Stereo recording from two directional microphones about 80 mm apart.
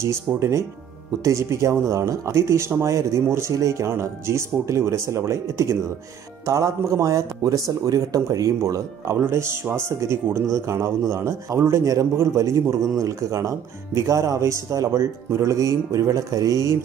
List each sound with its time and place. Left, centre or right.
0.0 s speech: right